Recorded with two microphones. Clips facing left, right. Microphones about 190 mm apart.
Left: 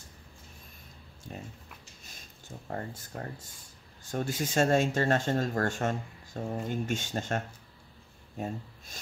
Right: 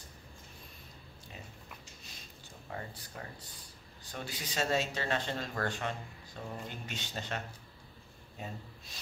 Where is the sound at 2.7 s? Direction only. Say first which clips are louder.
Left 6 dB; 45° left (ahead or behind).